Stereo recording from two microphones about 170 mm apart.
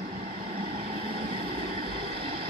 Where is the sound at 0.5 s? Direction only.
55° right (ahead or behind).